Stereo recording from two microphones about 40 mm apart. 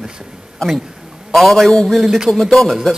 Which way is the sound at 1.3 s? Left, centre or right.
Centre.